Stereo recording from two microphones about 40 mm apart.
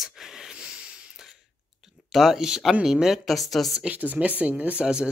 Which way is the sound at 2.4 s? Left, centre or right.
Centre.